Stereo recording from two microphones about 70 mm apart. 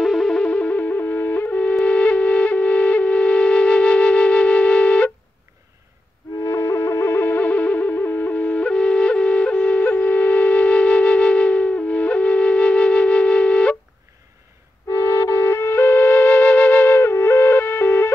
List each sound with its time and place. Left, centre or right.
0.0 s music: centre
0.4 s music: centre
6.4 s music: left; by 13.7 s centre
14.9 s flute: left